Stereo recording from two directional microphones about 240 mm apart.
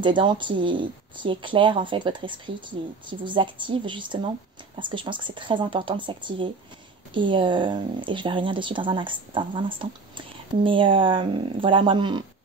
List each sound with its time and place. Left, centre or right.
0.0 s speech: centre